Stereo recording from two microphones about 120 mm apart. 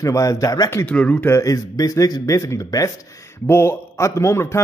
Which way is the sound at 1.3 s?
25° left (ahead or behind).